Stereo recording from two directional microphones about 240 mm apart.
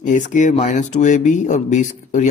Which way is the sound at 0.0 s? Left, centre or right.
Left.